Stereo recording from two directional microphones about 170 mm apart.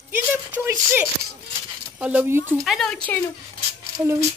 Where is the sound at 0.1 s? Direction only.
10° right (ahead or behind).